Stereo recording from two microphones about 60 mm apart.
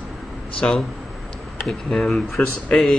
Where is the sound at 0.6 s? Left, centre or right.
Centre.